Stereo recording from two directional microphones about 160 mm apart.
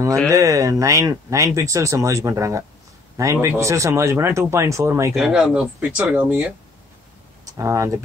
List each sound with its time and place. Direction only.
0.3 s speech: 20° right (ahead or behind)
5.1 s speech: 5° right (ahead or behind)